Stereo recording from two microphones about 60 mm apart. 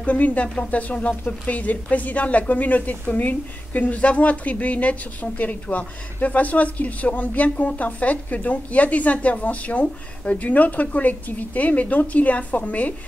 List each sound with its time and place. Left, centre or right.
0.0 s a woman's voice: left